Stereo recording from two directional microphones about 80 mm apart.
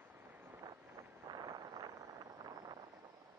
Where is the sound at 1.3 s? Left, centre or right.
Right.